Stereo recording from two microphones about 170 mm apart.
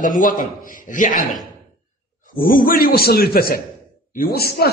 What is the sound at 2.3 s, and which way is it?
Speech, 55° left (ahead or behind).